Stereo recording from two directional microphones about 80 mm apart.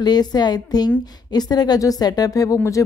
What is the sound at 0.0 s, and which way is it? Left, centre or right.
A woman's voice, left.